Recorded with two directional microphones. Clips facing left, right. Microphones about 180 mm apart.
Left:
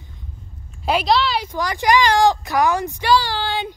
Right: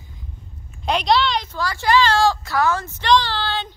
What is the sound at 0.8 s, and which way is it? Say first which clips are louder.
A woman's voice: left 1 dB; 5° left (ahead or behind).